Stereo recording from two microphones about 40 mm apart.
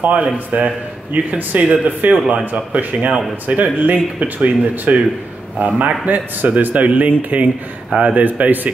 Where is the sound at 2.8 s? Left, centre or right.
Right.